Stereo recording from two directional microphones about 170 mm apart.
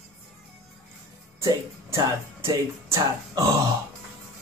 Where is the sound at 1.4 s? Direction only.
20° right (ahead or behind).